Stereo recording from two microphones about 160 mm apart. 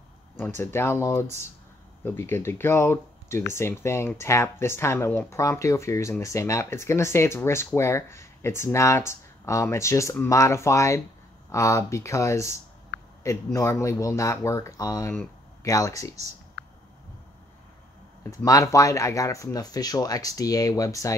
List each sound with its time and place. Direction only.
0.6 s speech: 15° left (ahead or behind)
18.2 s speech: 20° left (ahead or behind)